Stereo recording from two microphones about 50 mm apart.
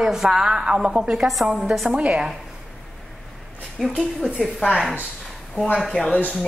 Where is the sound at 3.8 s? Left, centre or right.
Centre.